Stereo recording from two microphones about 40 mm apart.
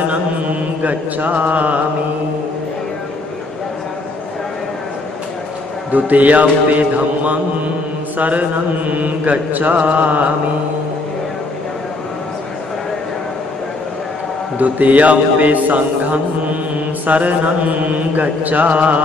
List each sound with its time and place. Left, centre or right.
0.8 s mantra: right
5.9 s mantra: right
8.2 s mantra: right
14.6 s mantra: right